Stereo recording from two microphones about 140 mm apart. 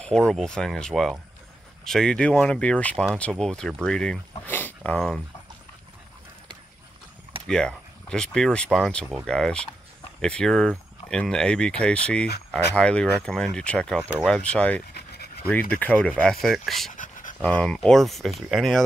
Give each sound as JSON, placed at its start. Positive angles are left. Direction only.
{"t": 0.3, "sound": "speech", "side_deg": 5}
{"t": 7.4, "sound": "speech", "side_deg": 5}
{"t": 16.9, "sound": "dog", "side_deg": 70}
{"t": 17.4, "sound": "speech", "side_deg": 10}